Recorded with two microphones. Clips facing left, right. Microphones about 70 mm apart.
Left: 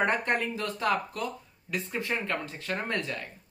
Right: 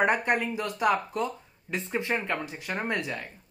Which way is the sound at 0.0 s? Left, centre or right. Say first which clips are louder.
Right 2 dB; centre.